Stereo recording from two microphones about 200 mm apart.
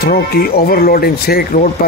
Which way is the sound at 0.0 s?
50° left (ahead or behind).